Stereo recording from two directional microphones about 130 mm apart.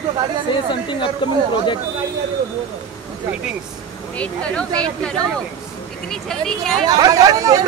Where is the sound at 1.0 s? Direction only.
40° left (ahead or behind).